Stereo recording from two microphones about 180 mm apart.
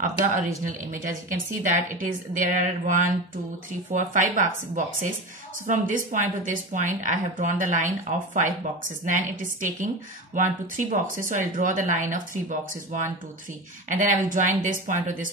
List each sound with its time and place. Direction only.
0.0 s speech: 45° right (ahead or behind)
5.7 s speech: 45° right (ahead or behind)
9.0 s speech: 45° right (ahead or behind)